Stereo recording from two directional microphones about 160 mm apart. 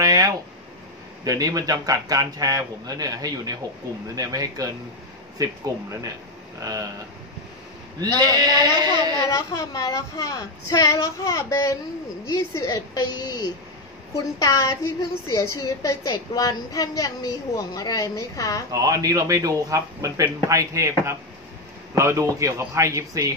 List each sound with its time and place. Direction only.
0.0 s a sound: 25° right (ahead or behind)
1.2 s speech: 20° right (ahead or behind)
8.2 s speech: 25° right (ahead or behind)
9.6 s a woman's voice: 25° left (ahead or behind)
18.7 s speech: 20° right (ahead or behind)
21.9 s speech: 20° right (ahead or behind)